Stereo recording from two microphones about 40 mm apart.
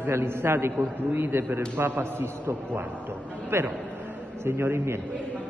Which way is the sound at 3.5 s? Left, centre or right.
Right.